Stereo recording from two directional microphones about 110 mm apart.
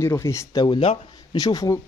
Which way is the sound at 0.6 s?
50° left (ahead or behind).